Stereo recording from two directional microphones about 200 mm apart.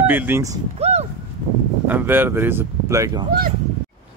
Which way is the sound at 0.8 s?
35° right (ahead or behind).